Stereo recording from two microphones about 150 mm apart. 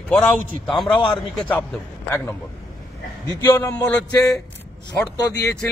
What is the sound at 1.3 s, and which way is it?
Speech, 5° left (ahead or behind).